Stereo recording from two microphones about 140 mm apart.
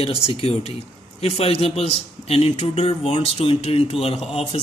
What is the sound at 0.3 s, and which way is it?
A man's voice, 45° left (ahead or behind).